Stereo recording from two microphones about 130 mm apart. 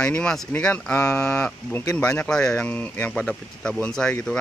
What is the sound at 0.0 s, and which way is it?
Speech, 10° left (ahead or behind).